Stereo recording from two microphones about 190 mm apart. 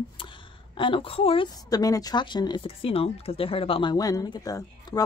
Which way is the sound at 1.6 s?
20° left (ahead or behind).